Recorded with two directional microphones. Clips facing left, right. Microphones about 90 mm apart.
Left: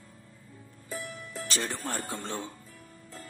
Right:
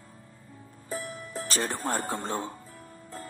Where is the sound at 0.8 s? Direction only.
40° right (ahead or behind).